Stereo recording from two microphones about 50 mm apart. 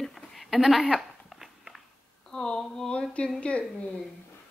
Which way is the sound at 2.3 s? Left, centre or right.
Centre.